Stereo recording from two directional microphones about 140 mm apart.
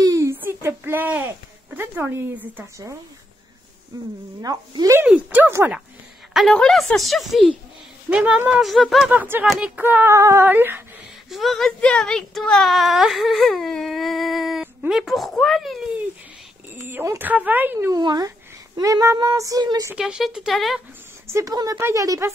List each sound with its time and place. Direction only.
0.0 s a sound: 25° right (ahead or behind)
3.9 s child singing: 30° right (ahead or behind)
5.0 s speech: 10° right (ahead or behind)
6.3 s speech: 5° left (ahead or behind)
9.1 s speech: 10° right (ahead or behind)
11.2 s speech: centre (ahead or behind)
16.8 s speech: 15° right (ahead or behind)
18.8 s child singing: 25° right (ahead or behind)
20.0 s speech: 5° right (ahead or behind)
21.3 s child singing: 25° right (ahead or behind)